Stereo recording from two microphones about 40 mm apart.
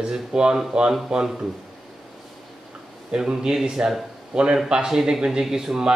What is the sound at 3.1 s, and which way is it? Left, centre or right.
Speech, centre.